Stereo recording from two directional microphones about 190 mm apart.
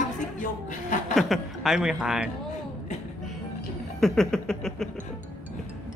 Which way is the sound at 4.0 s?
Centre (ahead or behind).